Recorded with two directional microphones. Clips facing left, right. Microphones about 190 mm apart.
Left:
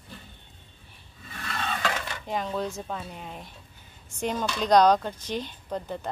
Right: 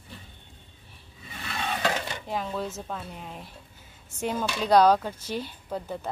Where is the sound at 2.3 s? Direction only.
5° right (ahead or behind).